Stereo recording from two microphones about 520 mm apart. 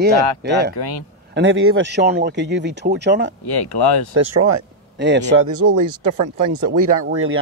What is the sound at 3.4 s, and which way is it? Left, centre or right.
Speech, left.